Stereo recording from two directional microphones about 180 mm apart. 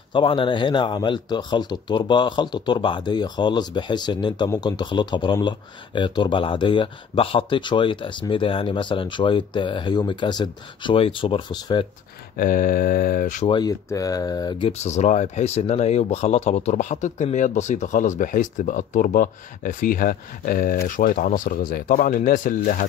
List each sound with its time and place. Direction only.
0.1 s speech: 30° left (ahead or behind)
12.4 s speech: 50° left (ahead or behind)
13.5 s speech: 20° left (ahead or behind)
14.7 s speech: 40° left (ahead or behind)